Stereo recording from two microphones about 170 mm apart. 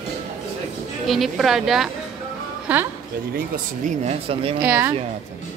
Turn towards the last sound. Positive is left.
turn(degrees=-10)  # may be behind; listen again after turning